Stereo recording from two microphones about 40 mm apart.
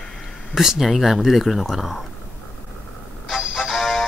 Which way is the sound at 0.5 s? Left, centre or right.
Centre.